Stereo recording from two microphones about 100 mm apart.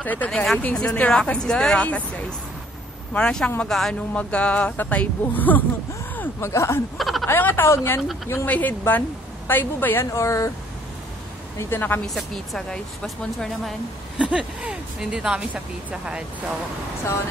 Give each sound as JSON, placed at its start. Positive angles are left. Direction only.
{"t": 0.0, "sound": "speech", "side_deg": 15}
{"t": 3.1, "sound": "speech", "side_deg": 10}
{"t": 4.2, "sound": "speech", "side_deg": 15}
{"t": 7.0, "sound": "a sound", "side_deg": 0}
{"t": 7.2, "sound": "a woman's voice", "side_deg": 20}
{"t": 11.5, "sound": "a woman's voice", "side_deg": 20}
{"t": 12.2, "sound": "speech", "side_deg": 5}
{"t": 14.1, "sound": "speech", "side_deg": -10}